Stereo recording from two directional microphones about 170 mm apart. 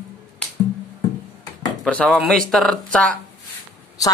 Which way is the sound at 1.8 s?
5° left (ahead or behind).